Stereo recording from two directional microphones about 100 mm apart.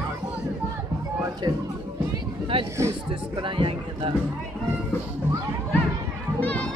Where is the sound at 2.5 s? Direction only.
65° right (ahead or behind).